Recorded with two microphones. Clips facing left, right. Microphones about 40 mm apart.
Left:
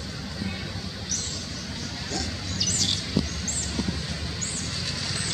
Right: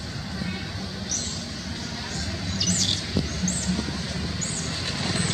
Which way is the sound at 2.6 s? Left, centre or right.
Centre.